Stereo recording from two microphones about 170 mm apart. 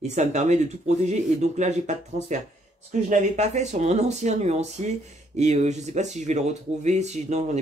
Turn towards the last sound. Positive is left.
turn(degrees=-40)  # may be behind; listen again after turning